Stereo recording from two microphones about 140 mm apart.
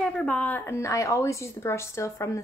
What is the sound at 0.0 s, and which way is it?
A woman's voice, 5° left (ahead or behind).